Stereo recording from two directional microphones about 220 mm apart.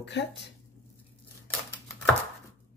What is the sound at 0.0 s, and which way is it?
Speech, 50° left (ahead or behind).